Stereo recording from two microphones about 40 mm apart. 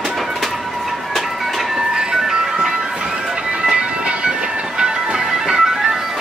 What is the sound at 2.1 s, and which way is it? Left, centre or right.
Music, centre.